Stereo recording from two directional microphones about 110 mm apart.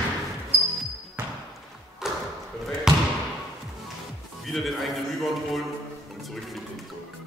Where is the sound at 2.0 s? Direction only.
5° right (ahead or behind).